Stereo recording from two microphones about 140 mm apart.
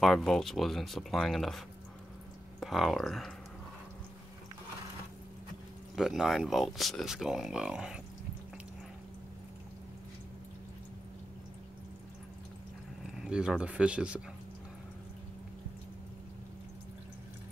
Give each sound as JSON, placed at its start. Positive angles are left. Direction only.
{"t": 0.0, "sound": "speech", "side_deg": 0}
{"t": 2.6, "sound": "speech", "side_deg": 0}
{"t": 5.9, "sound": "speech", "side_deg": 0}
{"t": 13.2, "sound": "speech", "side_deg": -5}